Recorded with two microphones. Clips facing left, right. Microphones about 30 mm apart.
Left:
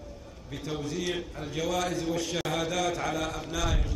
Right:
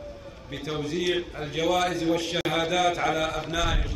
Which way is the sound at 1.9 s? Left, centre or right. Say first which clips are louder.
Right 5 dB; right.